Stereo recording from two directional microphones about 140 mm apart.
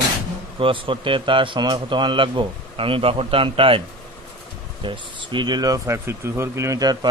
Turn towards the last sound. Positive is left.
turn(degrees=-25)  # may be behind; listen again after turning